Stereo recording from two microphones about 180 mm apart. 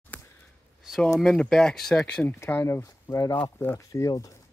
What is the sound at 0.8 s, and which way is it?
Speech, centre (ahead or behind).